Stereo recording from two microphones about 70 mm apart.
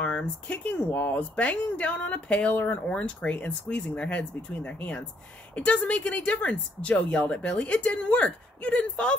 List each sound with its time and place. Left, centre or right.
0.0 s speech: centre